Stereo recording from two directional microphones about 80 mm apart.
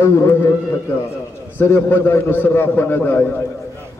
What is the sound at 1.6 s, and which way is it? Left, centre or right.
A man's voice, left.